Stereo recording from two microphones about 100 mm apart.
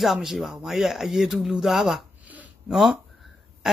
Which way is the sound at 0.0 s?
Centre (ahead or behind).